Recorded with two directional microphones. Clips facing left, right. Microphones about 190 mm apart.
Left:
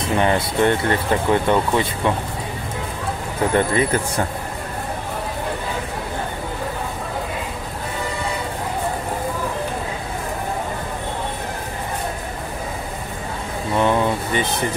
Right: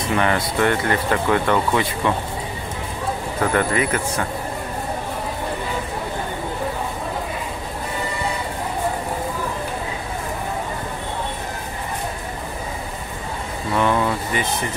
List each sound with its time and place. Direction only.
0.1 s speech: 25° left (ahead or behind)
3.5 s speech: 30° left (ahead or behind)
13.7 s a sound: 20° left (ahead or behind)